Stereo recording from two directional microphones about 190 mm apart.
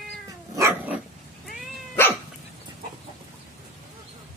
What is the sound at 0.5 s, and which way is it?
Dog, 15° right (ahead or behind).